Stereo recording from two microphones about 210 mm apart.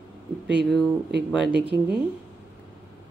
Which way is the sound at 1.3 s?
5° right (ahead or behind).